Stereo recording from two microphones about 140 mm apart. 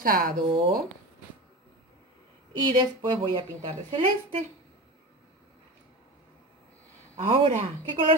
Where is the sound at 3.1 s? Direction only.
40° right (ahead or behind).